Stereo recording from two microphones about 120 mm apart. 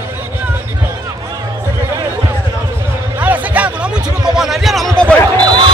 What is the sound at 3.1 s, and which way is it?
Music, 15° right (ahead or behind).